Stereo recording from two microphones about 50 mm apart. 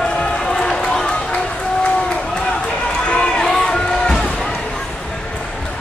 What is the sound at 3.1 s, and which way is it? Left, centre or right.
Run, centre.